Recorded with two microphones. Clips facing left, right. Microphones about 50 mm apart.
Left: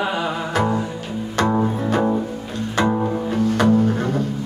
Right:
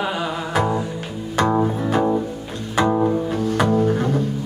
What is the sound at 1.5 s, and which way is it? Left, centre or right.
Double bass, centre.